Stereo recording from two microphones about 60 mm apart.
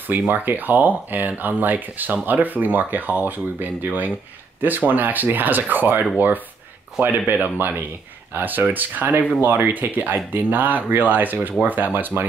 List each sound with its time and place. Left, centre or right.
0.3 s speech: right